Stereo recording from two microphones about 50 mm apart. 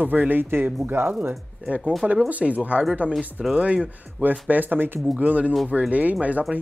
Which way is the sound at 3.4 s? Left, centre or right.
Centre.